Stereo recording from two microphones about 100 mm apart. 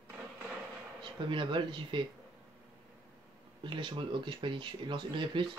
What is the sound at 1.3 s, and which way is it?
Speech, 55° right (ahead or behind).